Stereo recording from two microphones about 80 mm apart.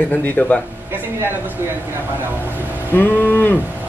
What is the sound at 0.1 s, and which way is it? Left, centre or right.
Speech, left.